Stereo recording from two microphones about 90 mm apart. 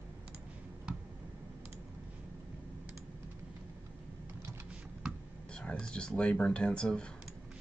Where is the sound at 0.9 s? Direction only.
10° right (ahead or behind).